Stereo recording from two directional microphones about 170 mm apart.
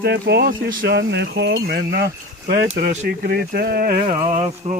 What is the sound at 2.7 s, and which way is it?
Speech, 45° right (ahead or behind).